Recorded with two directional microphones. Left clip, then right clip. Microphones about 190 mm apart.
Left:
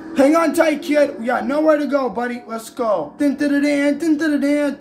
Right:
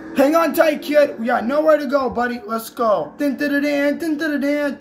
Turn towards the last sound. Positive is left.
turn(degrees=-5)  # may be behind; listen again after turning